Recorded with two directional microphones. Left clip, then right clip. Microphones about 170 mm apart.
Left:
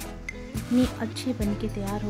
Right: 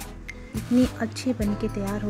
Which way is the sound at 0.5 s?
Centre (ahead or behind).